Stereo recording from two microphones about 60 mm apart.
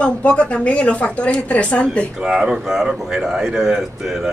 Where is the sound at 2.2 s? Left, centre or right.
Centre.